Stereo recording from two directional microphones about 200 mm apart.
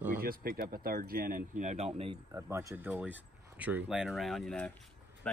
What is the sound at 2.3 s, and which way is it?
A man's voice, 10° right (ahead or behind).